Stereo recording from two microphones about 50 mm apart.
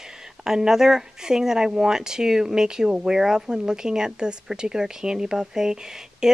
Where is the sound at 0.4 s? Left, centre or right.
Centre.